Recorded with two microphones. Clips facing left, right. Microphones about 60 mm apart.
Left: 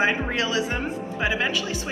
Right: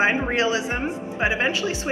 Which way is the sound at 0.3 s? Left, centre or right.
Right.